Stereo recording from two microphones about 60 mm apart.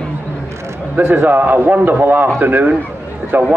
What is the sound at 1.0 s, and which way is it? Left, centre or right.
A man's voice, right.